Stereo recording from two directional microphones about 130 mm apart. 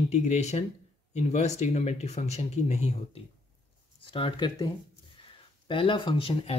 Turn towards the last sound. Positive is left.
turn(degrees=40)  # may be behind; listen again after turning